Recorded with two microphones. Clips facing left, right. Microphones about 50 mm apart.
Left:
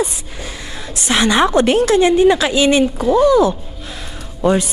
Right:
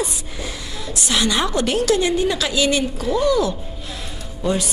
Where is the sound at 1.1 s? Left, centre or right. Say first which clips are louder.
Left 7 dB; left.